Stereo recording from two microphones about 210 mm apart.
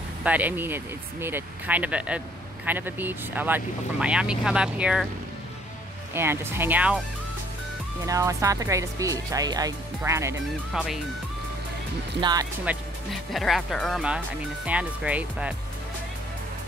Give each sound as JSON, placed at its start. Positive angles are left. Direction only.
{"t": 0.2, "sound": "speech", "side_deg": -5}
{"t": 6.1, "sound": "speech", "side_deg": -10}
{"t": 8.0, "sound": "speech", "side_deg": -15}
{"t": 10.7, "sound": "speech", "side_deg": 0}
{"t": 12.2, "sound": "speech", "side_deg": -20}
{"t": 12.6, "sound": "speech", "side_deg": 0}